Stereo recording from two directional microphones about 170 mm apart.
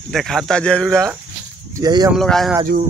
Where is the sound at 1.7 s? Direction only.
20° right (ahead or behind).